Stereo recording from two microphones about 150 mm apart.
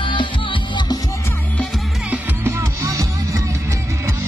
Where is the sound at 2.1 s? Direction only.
15° right (ahead or behind).